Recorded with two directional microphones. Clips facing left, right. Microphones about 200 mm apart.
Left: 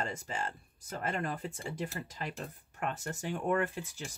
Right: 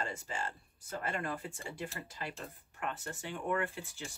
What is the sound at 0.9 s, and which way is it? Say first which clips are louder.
Speech: left 2 dB; 35° left (ahead or behind).